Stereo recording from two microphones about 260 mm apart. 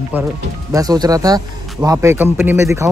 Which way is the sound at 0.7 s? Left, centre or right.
Centre.